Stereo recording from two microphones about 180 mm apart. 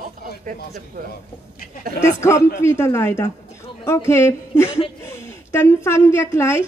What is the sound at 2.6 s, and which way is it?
A woman's voice, 15° left (ahead or behind).